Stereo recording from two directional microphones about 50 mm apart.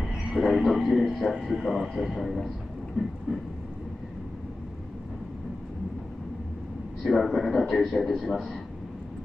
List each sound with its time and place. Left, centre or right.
0.0 s speech: centre
3.0 s train: right
7.0 s speech: centre